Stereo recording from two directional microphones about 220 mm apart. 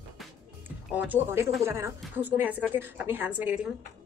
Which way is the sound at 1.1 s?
10° right (ahead or behind).